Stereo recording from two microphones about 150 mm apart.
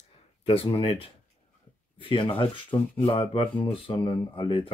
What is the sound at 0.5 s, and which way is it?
Speech, 40° left (ahead or behind).